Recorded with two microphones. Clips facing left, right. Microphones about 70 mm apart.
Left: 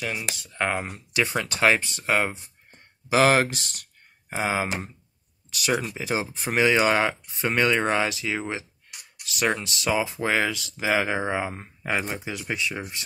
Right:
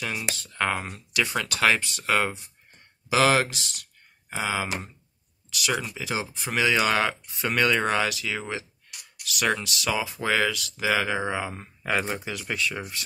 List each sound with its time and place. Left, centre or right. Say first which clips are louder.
0.3 s speech: right 1 dB; centre
3.1 s speech: left 2 dB; left
11.6 s speech: right 1 dB; centre